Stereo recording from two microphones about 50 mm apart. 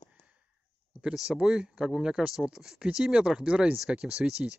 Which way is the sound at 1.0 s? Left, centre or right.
Centre.